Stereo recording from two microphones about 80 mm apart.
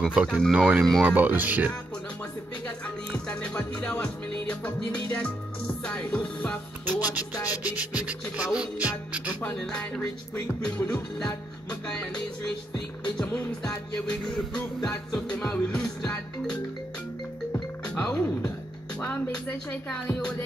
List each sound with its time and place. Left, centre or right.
0.0 s music: centre
1.0 s speech: right
3.1 s music: centre
6.9 s speech: right
7.3 s music: left
7.6 s music: centre
9.6 s music: centre
13.7 s music: centre
17.8 s music: centre